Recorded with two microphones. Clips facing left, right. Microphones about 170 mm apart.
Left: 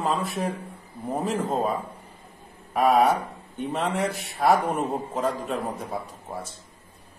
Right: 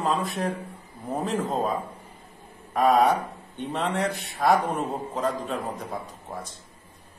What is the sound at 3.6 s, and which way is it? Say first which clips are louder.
Speech: left 1 dB; 5° left (ahead or behind).